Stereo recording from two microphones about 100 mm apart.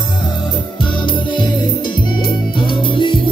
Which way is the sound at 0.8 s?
50° left (ahead or behind).